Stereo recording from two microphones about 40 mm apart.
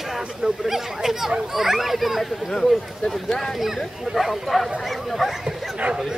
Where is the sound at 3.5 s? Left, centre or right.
Centre.